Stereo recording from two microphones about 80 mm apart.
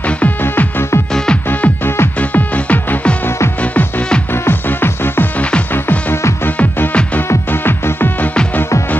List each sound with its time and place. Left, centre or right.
0.2 s music: left
1.1 s music: centre
1.5 s music: left
4.3 s music: left